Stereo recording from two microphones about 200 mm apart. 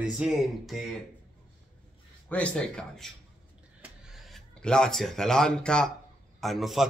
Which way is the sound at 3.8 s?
Centre (ahead or behind).